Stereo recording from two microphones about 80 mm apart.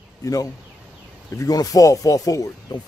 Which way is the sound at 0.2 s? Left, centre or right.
Left.